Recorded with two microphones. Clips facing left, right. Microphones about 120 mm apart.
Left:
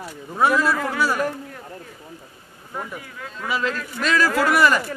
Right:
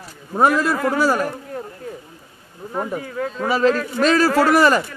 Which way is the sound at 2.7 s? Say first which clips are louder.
Right 8 dB; 45° right (ahead or behind).